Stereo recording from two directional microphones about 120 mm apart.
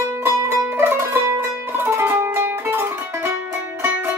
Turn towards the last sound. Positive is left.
turn(degrees=-20)  # may be behind; listen again after turning